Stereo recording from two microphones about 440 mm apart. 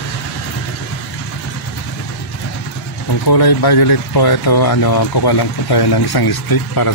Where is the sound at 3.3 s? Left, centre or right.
Left.